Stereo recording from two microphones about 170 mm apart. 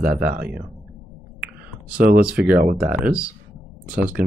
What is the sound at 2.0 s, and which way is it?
Speech, 60° right (ahead or behind).